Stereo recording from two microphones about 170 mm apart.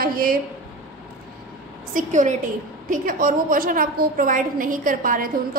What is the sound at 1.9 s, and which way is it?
A woman's voice, 50° right (ahead or behind).